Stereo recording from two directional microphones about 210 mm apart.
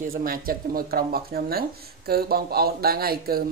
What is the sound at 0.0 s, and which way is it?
Speech, 40° right (ahead or behind).